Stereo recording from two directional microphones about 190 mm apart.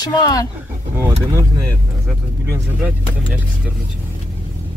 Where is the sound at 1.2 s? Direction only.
15° right (ahead or behind).